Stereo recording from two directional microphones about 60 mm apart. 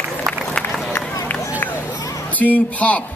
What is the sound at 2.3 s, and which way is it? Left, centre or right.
Speech, left.